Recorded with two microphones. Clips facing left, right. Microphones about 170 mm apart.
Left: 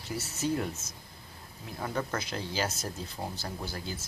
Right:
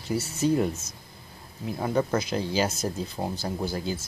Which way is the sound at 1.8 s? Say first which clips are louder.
Right 8 dB; 15° right (ahead or behind).